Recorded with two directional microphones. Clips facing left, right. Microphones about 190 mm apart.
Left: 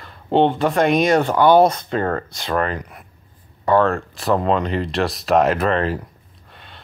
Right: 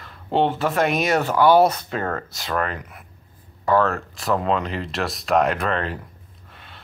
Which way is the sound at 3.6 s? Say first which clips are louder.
Left 3 dB; 30° left (ahead or behind).